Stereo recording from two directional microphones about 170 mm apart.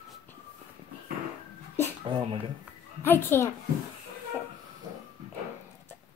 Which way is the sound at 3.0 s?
15° left (ahead or behind).